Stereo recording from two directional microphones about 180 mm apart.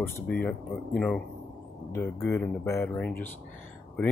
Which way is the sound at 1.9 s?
15° left (ahead or behind).